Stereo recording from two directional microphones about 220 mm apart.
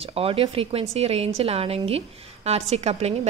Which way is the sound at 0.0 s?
25° right (ahead or behind).